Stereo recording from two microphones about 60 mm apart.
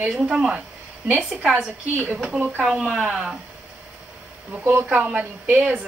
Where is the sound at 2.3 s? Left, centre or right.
Right.